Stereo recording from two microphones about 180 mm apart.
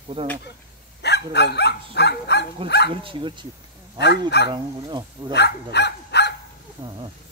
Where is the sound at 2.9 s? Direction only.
30° right (ahead or behind).